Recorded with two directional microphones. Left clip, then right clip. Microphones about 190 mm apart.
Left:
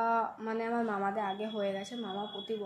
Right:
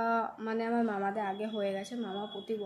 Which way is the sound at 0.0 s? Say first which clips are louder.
Left 1 dB; 20° right (ahead or behind).